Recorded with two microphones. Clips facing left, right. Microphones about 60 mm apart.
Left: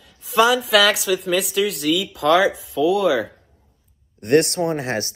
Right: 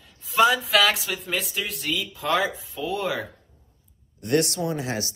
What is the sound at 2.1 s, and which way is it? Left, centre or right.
Speech, left.